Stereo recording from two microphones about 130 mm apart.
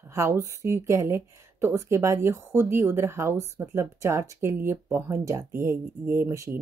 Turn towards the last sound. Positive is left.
turn(degrees=-20)  # may be behind; listen again after turning